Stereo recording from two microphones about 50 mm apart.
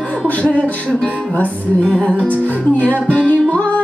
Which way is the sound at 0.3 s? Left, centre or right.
Left.